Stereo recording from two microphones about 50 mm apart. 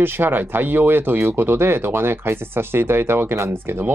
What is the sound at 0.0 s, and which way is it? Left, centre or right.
Speech, right.